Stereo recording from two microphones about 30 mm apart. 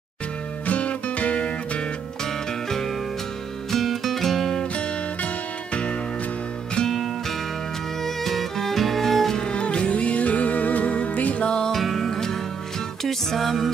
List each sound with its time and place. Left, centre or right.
0.7 s music: left
3.7 s music: centre
4.7 s music: left
6.9 s music: centre
9.5 s music: left
10.2 s music: left
11.4 s music: left
11.7 s music: centre